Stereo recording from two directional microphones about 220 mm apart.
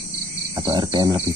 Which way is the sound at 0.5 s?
25° right (ahead or behind).